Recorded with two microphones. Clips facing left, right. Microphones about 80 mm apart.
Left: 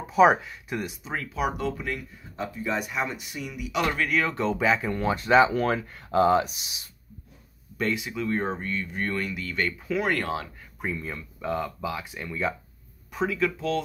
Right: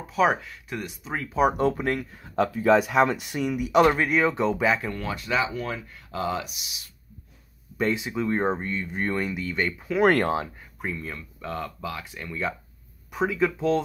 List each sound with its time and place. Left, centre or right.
0.1 s speech: centre
1.3 s speech: right
2.0 s speech: right
3.3 s speech: right
3.9 s speech: right
4.6 s speech: centre
4.9 s speech: left
5.5 s speech: left
7.7 s speech: right
10.2 s speech: right
10.8 s speech: centre
13.1 s speech: centre